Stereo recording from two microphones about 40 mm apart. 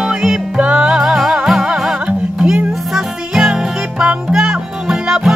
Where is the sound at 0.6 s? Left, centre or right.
Right.